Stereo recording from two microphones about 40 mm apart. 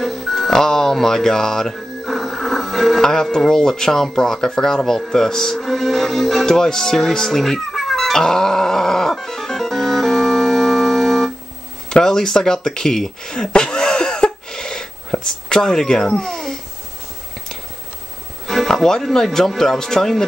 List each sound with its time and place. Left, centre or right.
0.0 s music: centre
0.5 s speech: centre
2.0 s music: centre
3.0 s speech: centre
5.6 s music: centre
6.4 s speech: centre
7.7 s cat: centre
9.1 s music: centre
11.9 s a sound: centre
15.2 s speech: centre
16.1 s a sound: centre
18.7 s music: centre
18.9 s speech: centre